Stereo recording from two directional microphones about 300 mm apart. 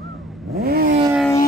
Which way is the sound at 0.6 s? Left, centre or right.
Right.